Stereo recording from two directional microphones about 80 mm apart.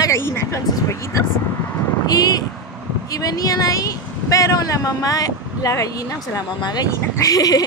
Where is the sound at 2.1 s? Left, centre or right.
Left.